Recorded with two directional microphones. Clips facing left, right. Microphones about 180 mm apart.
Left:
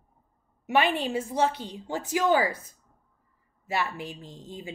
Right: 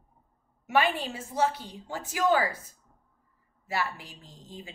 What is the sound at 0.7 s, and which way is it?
A woman's voice, 20° left (ahead or behind).